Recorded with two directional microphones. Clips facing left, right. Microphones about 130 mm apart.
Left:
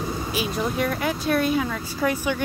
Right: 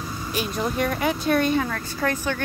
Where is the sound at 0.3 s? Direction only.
Centre (ahead or behind).